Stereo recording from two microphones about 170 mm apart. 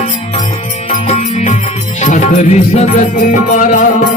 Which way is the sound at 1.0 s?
40° left (ahead or behind).